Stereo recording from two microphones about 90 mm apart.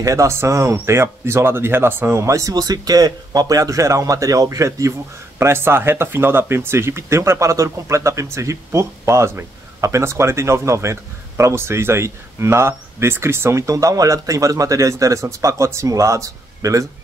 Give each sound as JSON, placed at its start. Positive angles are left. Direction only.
{"t": 0.0, "sound": "speech", "side_deg": -35}
{"t": 2.5, "sound": "speech", "side_deg": -45}